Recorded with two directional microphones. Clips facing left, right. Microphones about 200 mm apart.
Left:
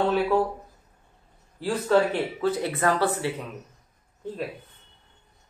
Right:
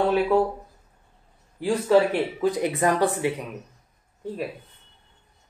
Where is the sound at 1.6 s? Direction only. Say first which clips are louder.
Right 3 dB; 10° right (ahead or behind).